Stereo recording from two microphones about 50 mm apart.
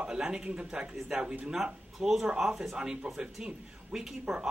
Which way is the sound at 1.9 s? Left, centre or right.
Centre.